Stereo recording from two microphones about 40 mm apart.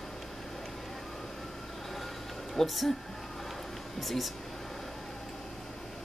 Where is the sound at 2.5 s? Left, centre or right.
Centre.